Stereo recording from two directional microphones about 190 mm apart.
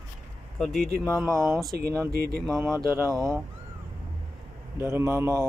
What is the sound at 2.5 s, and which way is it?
Speech, 15° right (ahead or behind).